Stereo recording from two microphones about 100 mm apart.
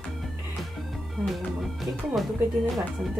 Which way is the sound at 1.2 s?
Centre (ahead or behind).